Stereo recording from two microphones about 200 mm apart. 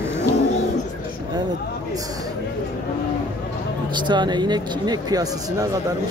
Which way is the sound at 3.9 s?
20° right (ahead or behind).